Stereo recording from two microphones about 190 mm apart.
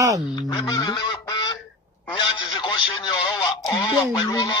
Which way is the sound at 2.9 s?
20° left (ahead or behind).